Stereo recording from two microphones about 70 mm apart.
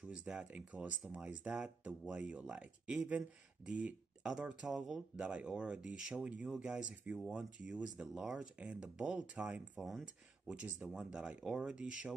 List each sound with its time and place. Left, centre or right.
0.1 s speech: centre
8.5 s speech: centre
9.8 s speech: centre
10.5 s speech: centre